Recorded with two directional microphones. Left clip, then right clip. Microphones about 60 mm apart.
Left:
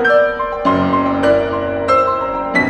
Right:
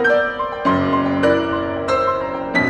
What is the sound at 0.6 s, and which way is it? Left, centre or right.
Music, left.